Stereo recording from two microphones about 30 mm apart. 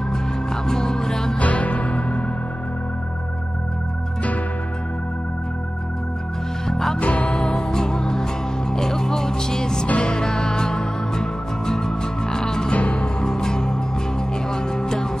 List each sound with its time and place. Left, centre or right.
0.7 s music: left
1.4 s music: left
6.7 s music: centre
7.0 s music: left
7.5 s music: left
12.7 s music: left
13.3 s music: left